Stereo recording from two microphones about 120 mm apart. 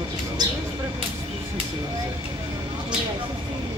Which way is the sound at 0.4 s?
35° right (ahead or behind).